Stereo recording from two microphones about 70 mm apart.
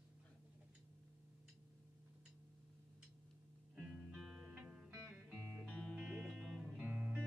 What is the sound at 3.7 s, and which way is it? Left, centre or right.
Music, centre.